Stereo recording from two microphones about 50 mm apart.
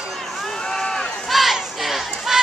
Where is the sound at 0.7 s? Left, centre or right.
Centre.